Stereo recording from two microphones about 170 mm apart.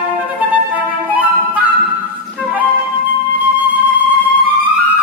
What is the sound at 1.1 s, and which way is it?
Flute, 10° right (ahead or behind).